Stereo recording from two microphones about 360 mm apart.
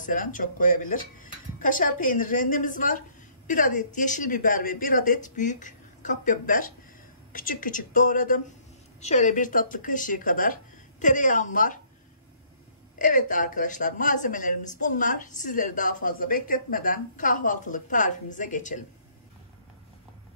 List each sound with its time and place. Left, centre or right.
0.0 s speech: left
13.0 s speech: left